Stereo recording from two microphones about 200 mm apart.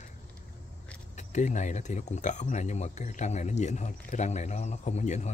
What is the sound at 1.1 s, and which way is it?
Speech, 35° left (ahead or behind).